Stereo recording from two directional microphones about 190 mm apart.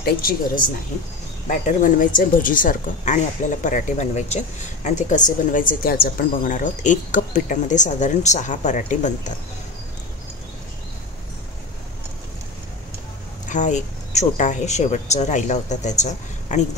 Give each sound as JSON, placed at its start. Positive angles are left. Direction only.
{"t": 0.0, "sound": "speech", "side_deg": 50}
{"t": 13.5, "sound": "speech", "side_deg": 40}